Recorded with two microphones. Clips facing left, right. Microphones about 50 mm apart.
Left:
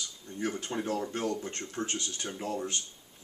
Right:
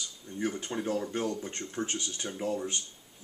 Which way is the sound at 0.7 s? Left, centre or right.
Centre.